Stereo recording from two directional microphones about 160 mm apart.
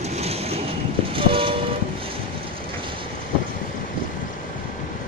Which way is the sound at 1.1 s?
35° right (ahead or behind).